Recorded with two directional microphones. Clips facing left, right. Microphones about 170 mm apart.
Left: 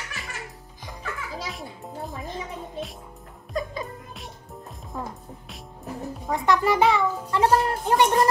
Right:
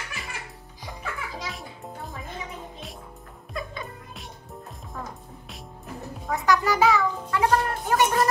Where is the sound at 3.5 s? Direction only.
35° left (ahead or behind).